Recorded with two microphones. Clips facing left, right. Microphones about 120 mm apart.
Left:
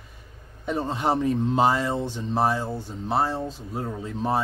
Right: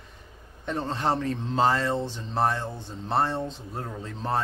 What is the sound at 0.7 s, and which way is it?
Speech, 10° left (ahead or behind).